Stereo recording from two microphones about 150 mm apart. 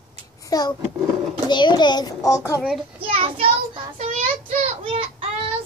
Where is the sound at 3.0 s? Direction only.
35° right (ahead or behind).